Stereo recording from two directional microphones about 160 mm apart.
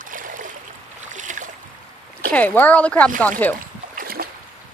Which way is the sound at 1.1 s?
50° right (ahead or behind).